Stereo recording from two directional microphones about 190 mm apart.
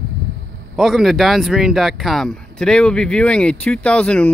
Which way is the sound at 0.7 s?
Centre (ahead or behind).